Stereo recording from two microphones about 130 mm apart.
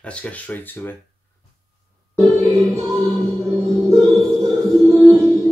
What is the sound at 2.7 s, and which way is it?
Music, 25° right (ahead or behind).